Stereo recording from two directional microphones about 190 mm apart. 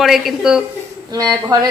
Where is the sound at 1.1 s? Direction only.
20° right (ahead or behind).